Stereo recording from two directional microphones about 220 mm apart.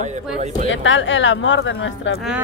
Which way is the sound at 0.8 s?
55° left (ahead or behind).